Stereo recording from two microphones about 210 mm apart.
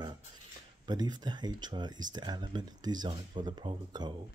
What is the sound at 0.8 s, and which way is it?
Speech, 20° right (ahead or behind).